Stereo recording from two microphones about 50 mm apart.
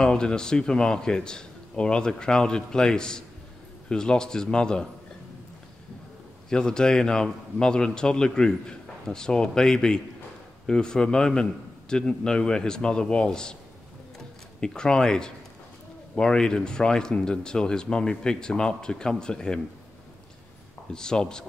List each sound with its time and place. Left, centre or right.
0.0 s speech: centre
6.5 s speech: centre
14.1 s music: centre
16.2 s speech: centre
20.9 s speech: centre